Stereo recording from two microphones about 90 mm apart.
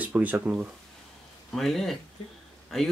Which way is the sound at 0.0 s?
15° right (ahead or behind).